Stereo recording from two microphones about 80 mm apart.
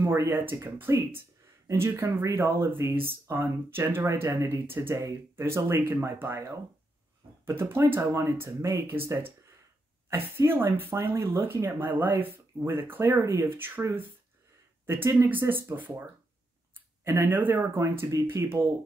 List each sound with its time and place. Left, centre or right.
0.0 s speech: right
10.1 s speech: right
14.9 s speech: right
15.2 s speech: right
17.7 s speech: right